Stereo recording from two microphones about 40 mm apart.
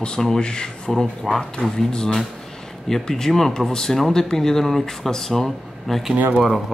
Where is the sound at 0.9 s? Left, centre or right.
Centre.